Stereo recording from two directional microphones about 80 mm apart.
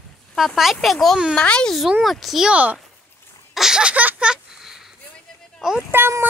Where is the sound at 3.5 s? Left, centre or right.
Centre.